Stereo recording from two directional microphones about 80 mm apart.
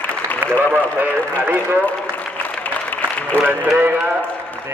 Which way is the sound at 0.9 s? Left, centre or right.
Right.